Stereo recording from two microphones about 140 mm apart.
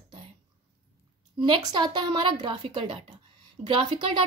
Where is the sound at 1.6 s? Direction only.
30° right (ahead or behind).